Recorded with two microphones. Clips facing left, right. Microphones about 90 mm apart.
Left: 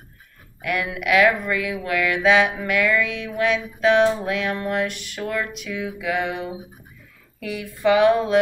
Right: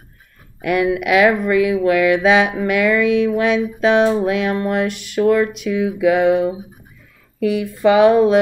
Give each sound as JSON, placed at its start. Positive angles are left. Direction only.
{"t": 0.6, "sound": "music", "side_deg": -20}
{"t": 7.5, "sound": "music", "side_deg": -20}